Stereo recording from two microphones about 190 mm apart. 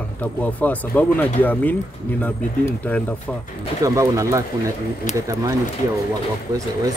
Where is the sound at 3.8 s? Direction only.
15° right (ahead or behind).